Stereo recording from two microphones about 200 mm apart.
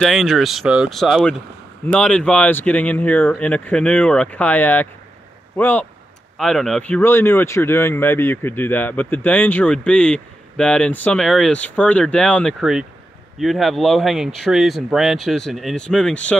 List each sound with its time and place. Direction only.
0.0 s speech: centre (ahead or behind)